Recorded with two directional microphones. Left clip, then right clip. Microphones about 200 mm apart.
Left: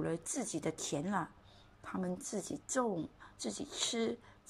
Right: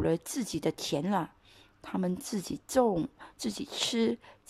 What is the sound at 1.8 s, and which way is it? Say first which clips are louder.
A woman's voice: right 6 dB; 30° right (ahead or behind).